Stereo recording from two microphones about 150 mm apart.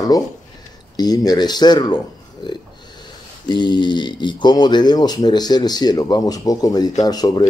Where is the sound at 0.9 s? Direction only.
25° left (ahead or behind).